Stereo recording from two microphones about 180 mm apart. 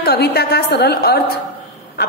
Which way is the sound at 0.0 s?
60° left (ahead or behind).